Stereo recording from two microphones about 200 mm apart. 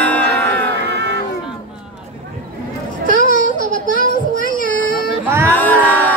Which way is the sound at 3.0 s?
45° left (ahead or behind).